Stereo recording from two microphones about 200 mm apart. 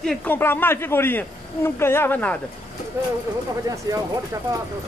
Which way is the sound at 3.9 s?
15° right (ahead or behind).